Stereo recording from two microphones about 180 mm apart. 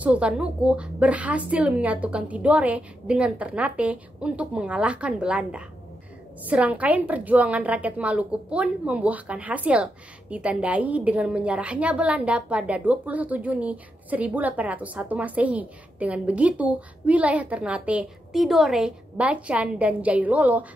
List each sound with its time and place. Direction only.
0.0 s a woman's voice: 5° right (ahead or behind)